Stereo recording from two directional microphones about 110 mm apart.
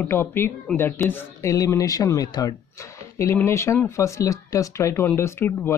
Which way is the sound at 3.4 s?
25° left (ahead or behind).